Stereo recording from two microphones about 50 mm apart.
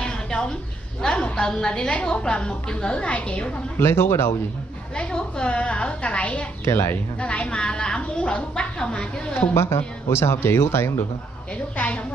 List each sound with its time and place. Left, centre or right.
0.0 s a sound: centre
1.0 s a woman's voice: centre
3.7 s speech: left
4.9 s a woman's voice: left
6.6 s speech: left
7.2 s a woman's voice: left
9.5 s speech: left
11.7 s a woman's voice: left